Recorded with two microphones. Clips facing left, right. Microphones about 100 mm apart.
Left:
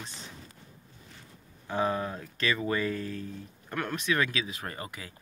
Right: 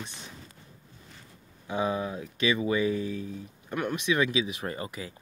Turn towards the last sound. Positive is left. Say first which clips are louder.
# right 5 dB
turn(degrees=-25)  # may be behind; listen again after turning